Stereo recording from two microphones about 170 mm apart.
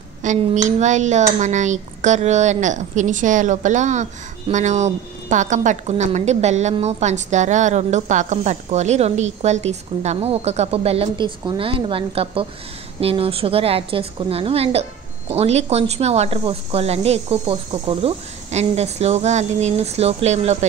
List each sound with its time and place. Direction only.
0.2 s a woman's voice: 45° right (ahead or behind)